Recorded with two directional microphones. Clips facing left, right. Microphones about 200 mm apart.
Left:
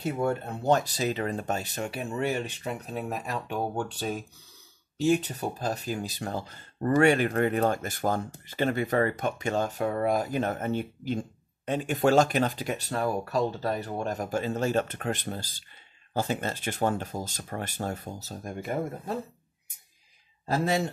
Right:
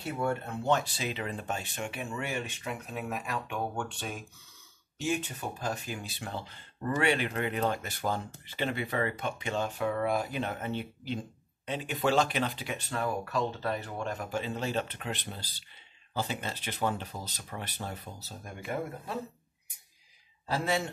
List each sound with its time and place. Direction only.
0.2 s speech: 40° left (ahead or behind)
20.4 s speech: 40° left (ahead or behind)